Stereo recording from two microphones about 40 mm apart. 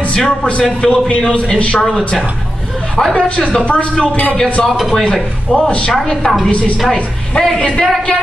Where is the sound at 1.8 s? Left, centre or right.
Centre.